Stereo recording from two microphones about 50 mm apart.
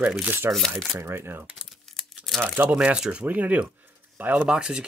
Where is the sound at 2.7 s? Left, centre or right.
Centre.